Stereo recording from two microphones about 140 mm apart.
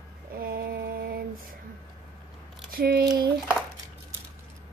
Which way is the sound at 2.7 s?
90° right.